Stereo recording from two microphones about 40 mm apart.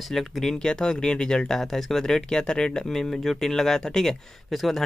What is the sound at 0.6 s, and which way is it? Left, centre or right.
Speech, centre.